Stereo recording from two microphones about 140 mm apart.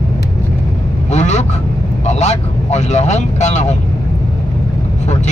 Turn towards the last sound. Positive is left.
turn(degrees=55)  # may be behind; listen again after turning